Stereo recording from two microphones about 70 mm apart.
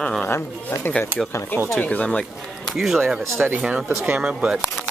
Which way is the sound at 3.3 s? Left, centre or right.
Right.